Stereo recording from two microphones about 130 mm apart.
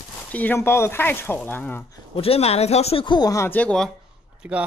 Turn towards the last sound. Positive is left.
turn(degrees=-5)  # may be behind; listen again after turning